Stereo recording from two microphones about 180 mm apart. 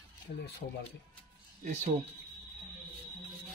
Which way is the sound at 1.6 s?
45° right (ahead or behind).